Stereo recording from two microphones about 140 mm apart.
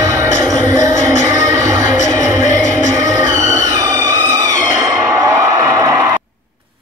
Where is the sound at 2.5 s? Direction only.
60° left (ahead or behind).